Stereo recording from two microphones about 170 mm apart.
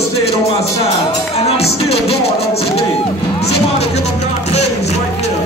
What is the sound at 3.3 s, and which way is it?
Music, 40° left (ahead or behind).